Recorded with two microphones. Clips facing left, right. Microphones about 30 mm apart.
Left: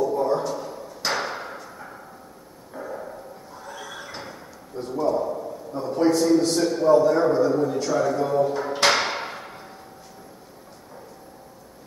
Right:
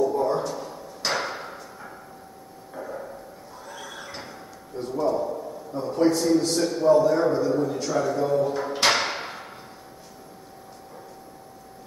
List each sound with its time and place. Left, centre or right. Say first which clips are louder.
0.0 s drawer open or close: left 1 dB; centre
2.7 s a sound: left 1 dB; centre
3.6 s neigh: left 2 dB; centre
5.7 s a man's voice: left 1 dB; centre